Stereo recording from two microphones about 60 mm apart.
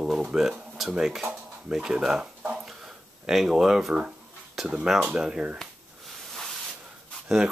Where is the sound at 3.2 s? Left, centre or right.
Centre.